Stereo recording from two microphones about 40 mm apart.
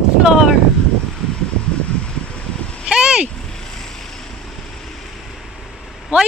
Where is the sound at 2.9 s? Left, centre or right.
Right.